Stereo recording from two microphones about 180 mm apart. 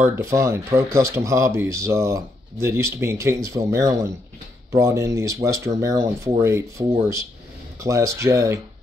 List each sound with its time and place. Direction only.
0.0 s speech: 15° right (ahead or behind)
7.8 s speech: 15° right (ahead or behind)